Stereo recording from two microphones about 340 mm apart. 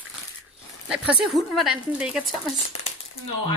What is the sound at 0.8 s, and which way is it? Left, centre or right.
A woman's voice, centre.